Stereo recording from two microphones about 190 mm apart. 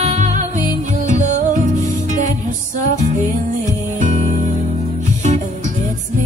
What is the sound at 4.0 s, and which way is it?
Music, 40° right (ahead or behind).